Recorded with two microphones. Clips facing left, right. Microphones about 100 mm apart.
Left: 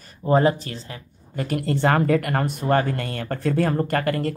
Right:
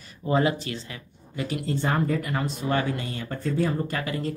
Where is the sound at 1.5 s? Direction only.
60° left (ahead or behind).